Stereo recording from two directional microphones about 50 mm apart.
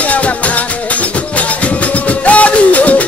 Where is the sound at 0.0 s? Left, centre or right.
Left.